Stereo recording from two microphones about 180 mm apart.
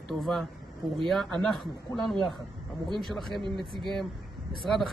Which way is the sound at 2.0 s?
Centre (ahead or behind).